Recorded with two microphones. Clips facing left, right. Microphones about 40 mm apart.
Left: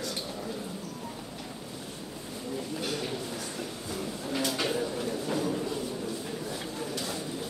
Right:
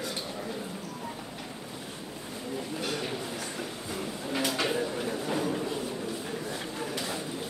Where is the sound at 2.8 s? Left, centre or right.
Right.